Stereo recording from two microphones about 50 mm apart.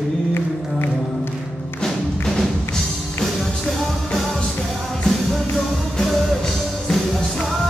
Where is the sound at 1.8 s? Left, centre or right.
Centre.